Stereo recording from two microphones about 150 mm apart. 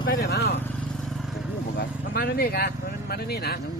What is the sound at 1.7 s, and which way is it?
Speech, 90° left.